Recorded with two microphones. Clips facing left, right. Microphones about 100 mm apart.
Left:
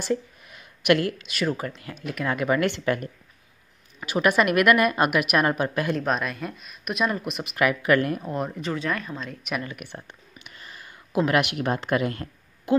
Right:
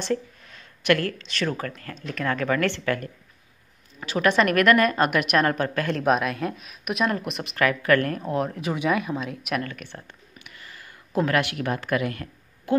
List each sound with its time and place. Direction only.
0.0 s a woman's voice: 10° left (ahead or behind)
5.9 s speech: 5° right (ahead or behind)
7.5 s a woman's voice: 15° left (ahead or behind)
8.2 s speech: centre (ahead or behind)
9.6 s a sound: 15° left (ahead or behind)
11.1 s speech: 20° left (ahead or behind)